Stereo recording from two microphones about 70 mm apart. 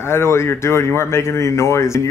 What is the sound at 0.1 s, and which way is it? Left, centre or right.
Speech, left.